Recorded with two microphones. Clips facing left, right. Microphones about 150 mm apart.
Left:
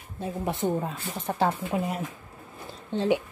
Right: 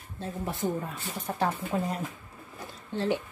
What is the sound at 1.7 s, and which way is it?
Speech, 10° left (ahead or behind).